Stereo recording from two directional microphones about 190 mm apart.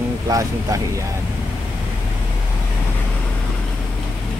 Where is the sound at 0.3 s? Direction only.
20° right (ahead or behind).